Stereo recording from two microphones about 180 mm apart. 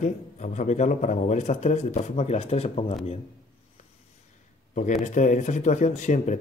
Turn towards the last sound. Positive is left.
turn(degrees=40)  # may be behind; listen again after turning